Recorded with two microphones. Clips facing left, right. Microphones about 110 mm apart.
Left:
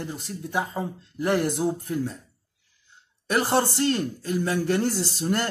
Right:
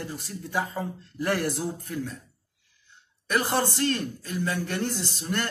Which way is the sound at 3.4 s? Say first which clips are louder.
Left 5 dB; 30° left (ahead or behind).